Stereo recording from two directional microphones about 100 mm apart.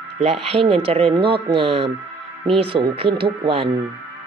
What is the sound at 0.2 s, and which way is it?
Speech, 85° right.